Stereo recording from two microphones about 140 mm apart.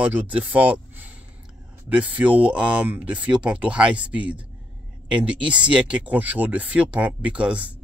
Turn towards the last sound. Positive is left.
turn(degrees=-10)  # may be behind; listen again after turning